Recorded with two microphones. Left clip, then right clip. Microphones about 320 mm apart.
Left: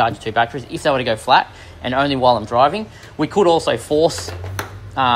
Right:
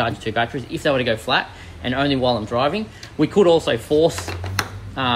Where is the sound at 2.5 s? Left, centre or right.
Left.